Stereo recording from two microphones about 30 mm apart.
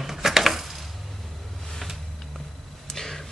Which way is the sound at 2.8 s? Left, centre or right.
Centre.